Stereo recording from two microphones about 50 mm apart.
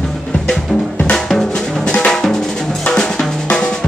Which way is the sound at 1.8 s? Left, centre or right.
Centre.